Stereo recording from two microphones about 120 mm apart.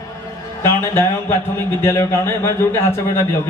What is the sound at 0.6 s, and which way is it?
Speech, 20° left (ahead or behind).